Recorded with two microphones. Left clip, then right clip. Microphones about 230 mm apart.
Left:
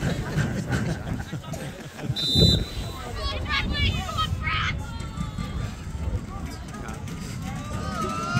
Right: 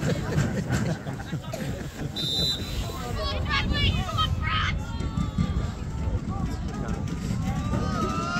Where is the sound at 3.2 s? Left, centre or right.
Centre.